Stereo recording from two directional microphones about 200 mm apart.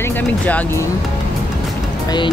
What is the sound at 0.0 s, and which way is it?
Speech, 10° left (ahead or behind).